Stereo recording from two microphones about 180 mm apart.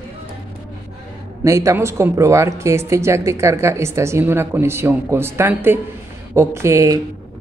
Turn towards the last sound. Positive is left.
turn(degrees=-15)  # may be behind; listen again after turning